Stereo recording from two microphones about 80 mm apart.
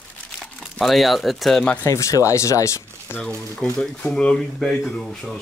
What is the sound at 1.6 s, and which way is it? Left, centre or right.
Speech, centre.